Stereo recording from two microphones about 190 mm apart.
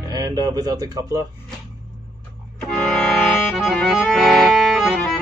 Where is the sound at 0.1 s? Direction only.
20° right (ahead or behind).